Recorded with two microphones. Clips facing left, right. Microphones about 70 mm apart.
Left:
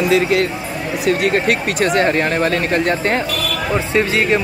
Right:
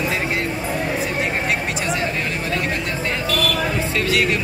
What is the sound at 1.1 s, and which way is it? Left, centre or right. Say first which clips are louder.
Speech: left 7 dB; left.